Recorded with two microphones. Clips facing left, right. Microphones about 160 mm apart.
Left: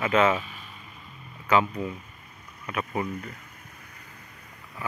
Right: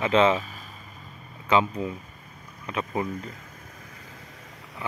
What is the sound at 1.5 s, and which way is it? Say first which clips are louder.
Speech: right 1 dB; 20° right (ahead or behind).